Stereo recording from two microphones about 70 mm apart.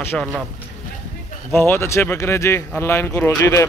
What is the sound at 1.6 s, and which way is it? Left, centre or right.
Speech, left.